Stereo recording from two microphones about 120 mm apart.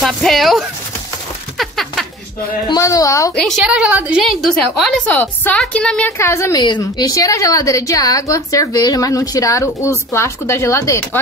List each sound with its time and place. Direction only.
0.0 s a woman's voice: centre (ahead or behind)
1.6 s a sound: centre (ahead or behind)
2.7 s a woman's voice: 30° left (ahead or behind)
3.3 s a woman's voice: 5° left (ahead or behind)
3.6 s a woman's voice: 10° right (ahead or behind)
5.1 s speech: 15° left (ahead or behind)
6.1 s a woman's voice: 25° left (ahead or behind)
6.6 s a woman's voice: 35° left (ahead or behind)